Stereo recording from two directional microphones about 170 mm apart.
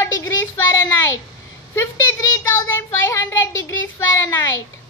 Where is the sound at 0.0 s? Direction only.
20° left (ahead or behind).